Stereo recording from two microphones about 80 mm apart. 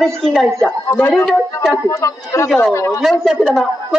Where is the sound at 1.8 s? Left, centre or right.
Left.